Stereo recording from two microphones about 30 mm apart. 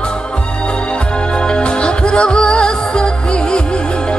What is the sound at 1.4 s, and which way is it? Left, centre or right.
Music, left.